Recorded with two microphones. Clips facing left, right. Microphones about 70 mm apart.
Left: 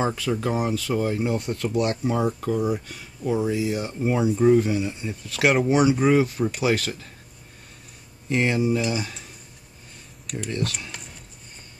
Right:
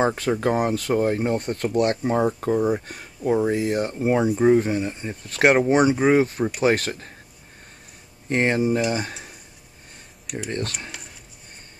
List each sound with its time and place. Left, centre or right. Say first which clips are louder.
0.0 s speech: right 3 dB; right
4.4 s speech: right 1 dB; right
8.3 s speech: right 1 dB; right
8.9 s cutlery: right 2 dB; right
10.5 s speech: left 1 dB; right